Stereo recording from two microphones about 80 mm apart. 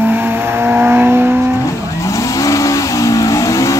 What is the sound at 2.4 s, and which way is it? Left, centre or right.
Vehicle, left.